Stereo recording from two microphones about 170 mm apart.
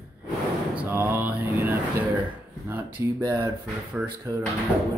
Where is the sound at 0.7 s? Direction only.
15° right (ahead or behind).